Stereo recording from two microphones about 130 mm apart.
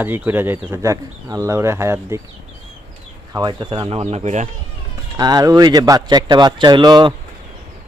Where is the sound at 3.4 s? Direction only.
35° right (ahead or behind); by 4.5 s 60° right (ahead or behind).